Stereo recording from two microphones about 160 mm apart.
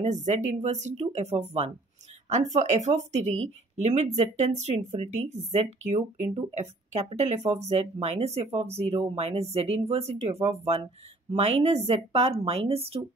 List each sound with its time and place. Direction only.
0.0 s a woman's voice: 50° right (ahead or behind)